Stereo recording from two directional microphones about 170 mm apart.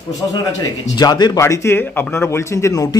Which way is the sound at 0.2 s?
20° left (ahead or behind).